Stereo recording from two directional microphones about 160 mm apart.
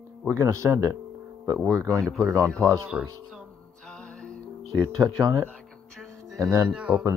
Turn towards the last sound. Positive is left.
turn(degrees=-5)  # may be behind; listen again after turning